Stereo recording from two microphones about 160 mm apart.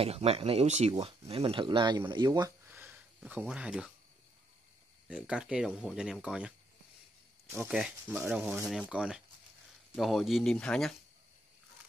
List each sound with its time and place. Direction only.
0.0 s speech: 40° right (ahead or behind)
0.9 s speech: 30° right (ahead or behind)
2.7 s a sound: 10° right (ahead or behind)
5.0 s speech: 5° right (ahead or behind)
7.5 s speech: 5° right (ahead or behind)